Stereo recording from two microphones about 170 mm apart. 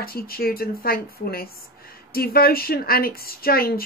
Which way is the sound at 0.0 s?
60° left (ahead or behind).